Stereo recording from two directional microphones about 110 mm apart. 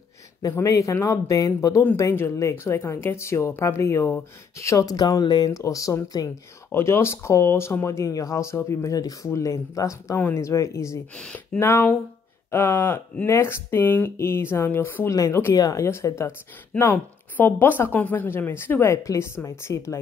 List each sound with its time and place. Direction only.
0.4 s speech: 35° left (ahead or behind)
11.1 s speech: 10° left (ahead or behind)
11.6 s speech: 20° left (ahead or behind)